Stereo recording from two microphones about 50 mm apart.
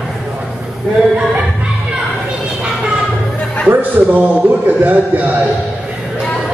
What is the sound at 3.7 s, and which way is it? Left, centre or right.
A man's voice, right.